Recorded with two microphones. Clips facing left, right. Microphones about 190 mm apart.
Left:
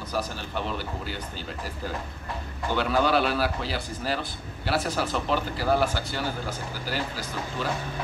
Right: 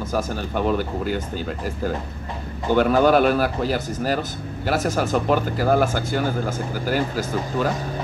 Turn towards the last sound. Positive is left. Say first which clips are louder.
# right 8 dB
turn(degrees=-45)  # may be behind; listen again after turning